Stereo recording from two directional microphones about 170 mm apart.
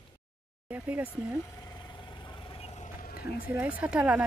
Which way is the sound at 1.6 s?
25° left (ahead or behind).